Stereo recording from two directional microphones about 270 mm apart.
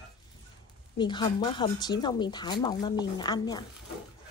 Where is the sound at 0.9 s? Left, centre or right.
Centre.